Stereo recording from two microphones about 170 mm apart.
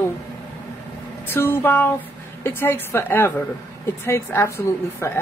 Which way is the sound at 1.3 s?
10° left (ahead or behind).